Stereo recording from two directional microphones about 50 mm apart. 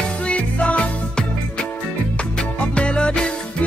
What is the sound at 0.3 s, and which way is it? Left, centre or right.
Music, left.